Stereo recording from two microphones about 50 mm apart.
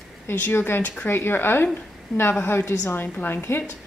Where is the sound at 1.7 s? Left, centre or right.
Left.